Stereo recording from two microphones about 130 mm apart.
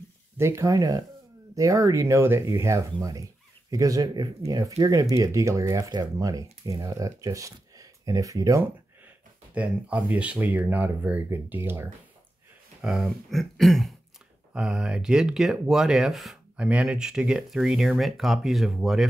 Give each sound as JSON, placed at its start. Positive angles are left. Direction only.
{"t": 0.4, "sound": "speech", "side_deg": -20}
{"t": 9.5, "sound": "speech", "side_deg": -10}
{"t": 12.8, "sound": "speech", "side_deg": -5}